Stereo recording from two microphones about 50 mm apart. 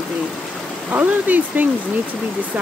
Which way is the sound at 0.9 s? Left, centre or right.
Right.